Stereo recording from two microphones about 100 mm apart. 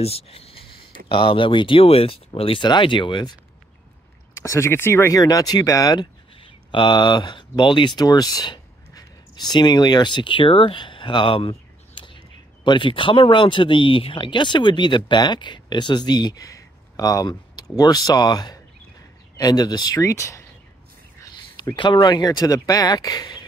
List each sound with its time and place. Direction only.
0.0 s speech: 85° left; by 2.6 s 65° left (ahead or behind)
2.6 s speech: 50° left (ahead or behind)
4.3 s speech: 30° left (ahead or behind)
5.1 s speech: 35° left (ahead or behind)
5.9 s speech: 55° left (ahead or behind)
20.0 s speech: 30° left (ahead or behind)
21.7 s speech: 50° left (ahead or behind)